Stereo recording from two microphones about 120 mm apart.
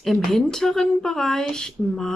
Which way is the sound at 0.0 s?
5° left (ahead or behind).